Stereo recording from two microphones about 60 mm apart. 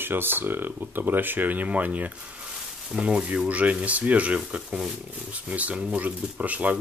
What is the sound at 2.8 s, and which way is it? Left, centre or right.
Speech, centre.